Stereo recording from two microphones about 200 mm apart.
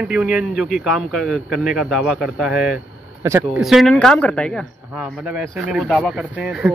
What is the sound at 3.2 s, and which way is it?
Speech, 15° right (ahead or behind).